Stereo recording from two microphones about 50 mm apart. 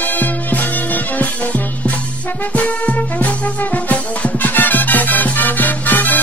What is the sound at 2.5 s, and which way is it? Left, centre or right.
Music, left.